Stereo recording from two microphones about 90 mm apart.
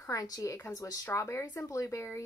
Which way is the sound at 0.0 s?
40° left (ahead or behind).